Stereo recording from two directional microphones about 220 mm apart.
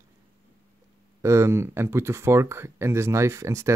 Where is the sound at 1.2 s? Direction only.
10° right (ahead or behind).